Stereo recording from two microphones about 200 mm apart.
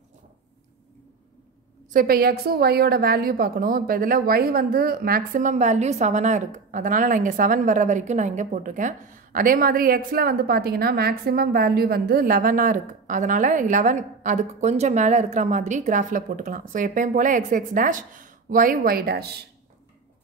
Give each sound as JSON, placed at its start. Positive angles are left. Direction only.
{"t": 1.9, "sound": "a woman's voice", "side_deg": -45}